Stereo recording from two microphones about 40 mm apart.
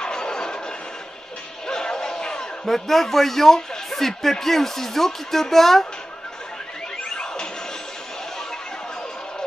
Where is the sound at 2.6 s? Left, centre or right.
Centre.